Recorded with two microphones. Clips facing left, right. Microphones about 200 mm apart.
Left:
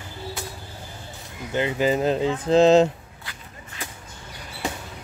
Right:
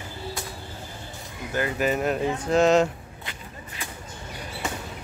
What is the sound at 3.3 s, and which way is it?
Whip, 25° right (ahead or behind).